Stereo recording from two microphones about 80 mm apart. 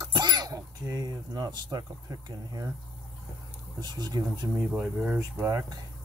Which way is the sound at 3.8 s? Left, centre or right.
Right.